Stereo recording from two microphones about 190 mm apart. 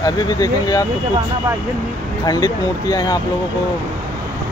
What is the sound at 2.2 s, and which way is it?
Speech, 20° left (ahead or behind).